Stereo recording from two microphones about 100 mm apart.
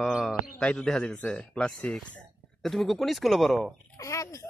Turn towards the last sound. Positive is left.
turn(degrees=30)  # may be behind; listen again after turning